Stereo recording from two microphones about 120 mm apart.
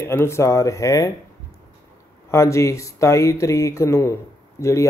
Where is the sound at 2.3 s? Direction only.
25° left (ahead or behind).